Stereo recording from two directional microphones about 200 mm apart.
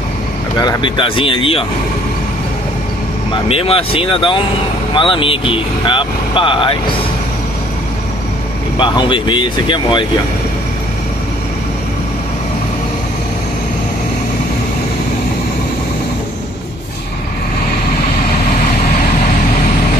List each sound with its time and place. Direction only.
0.6 s speech: 20° left (ahead or behind)
3.4 s speech: 30° left (ahead or behind)
8.7 s speech: 25° left (ahead or behind)